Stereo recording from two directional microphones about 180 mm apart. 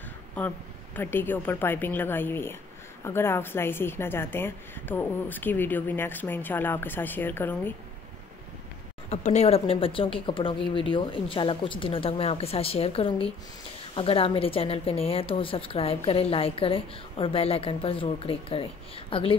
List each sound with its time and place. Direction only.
0.9 s a woman's voice: 10° left (ahead or behind)
9.1 s a woman's voice: 40° left (ahead or behind)